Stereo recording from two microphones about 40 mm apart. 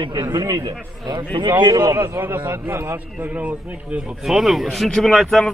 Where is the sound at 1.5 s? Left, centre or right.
Right.